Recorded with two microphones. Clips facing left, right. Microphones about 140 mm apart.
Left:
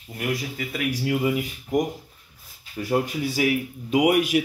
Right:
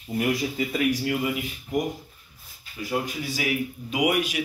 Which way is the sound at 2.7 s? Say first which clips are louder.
Left 4 dB; 45° left (ahead or behind).